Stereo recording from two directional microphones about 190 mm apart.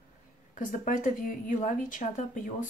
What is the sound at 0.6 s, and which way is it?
Speech, 45° left (ahead or behind).